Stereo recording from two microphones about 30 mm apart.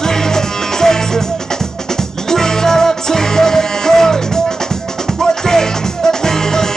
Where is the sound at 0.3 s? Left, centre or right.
Centre.